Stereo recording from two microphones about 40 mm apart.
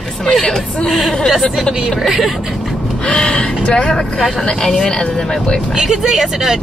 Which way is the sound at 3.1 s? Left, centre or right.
Left.